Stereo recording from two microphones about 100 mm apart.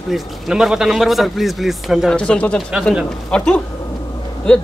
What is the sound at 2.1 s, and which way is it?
A man's voice, 10° left (ahead or behind).